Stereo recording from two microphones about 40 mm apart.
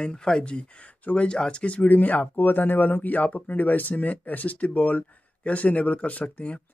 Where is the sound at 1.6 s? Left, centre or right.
Left.